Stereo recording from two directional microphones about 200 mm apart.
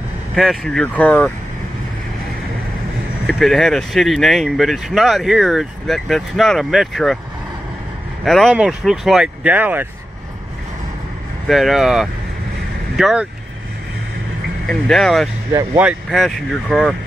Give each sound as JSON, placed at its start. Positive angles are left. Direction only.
{"t": 0.4, "sound": "speech", "side_deg": 0}
{"t": 3.3, "sound": "speech", "side_deg": 0}
{"t": 8.2, "sound": "speech", "side_deg": 0}
{"t": 11.4, "sound": "speech", "side_deg": 0}
{"t": 14.7, "sound": "speech", "side_deg": 0}